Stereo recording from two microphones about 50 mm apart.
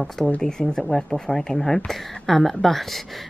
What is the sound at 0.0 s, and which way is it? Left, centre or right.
Speech, centre.